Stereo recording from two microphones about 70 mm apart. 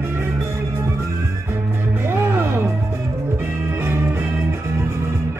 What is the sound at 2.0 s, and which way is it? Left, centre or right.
Music, right.